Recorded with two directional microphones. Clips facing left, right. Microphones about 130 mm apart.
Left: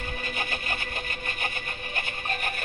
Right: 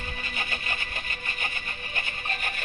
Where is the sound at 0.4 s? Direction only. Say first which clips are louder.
Left 1 dB; 50° left (ahead or behind).